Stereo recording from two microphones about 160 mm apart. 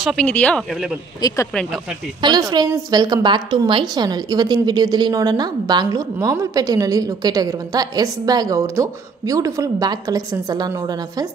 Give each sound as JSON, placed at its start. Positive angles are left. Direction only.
{"t": 0.0, "sound": "speech", "side_deg": 5}
{"t": 1.2, "sound": "speech", "side_deg": 20}
{"t": 1.5, "sound": "speech", "side_deg": 5}
{"t": 2.2, "sound": "a woman's voice", "side_deg": -25}